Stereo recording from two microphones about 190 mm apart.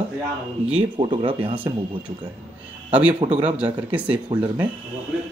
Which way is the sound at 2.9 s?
5° right (ahead or behind).